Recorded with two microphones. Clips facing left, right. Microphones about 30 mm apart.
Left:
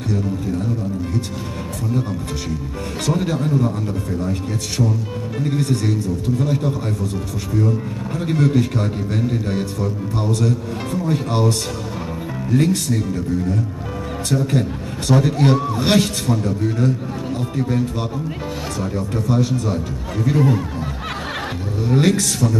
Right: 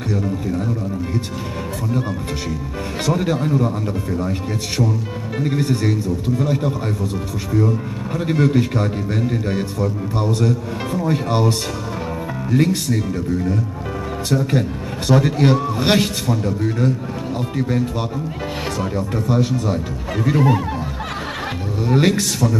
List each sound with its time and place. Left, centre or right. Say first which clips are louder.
0.1 s a man's voice: even; centre
3.1 s a man's voice: right 1 dB; centre
8.2 s a man's voice: right 1 dB; centre
15.8 s a man's voice: even; centre
16.3 s a man's voice: even; centre
21.8 s a man's voice: even; centre